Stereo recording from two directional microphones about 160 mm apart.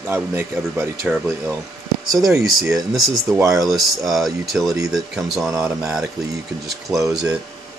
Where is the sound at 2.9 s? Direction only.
Centre (ahead or behind).